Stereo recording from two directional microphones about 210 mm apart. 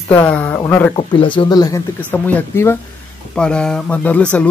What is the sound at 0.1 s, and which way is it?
Speech, 5° left (ahead or behind).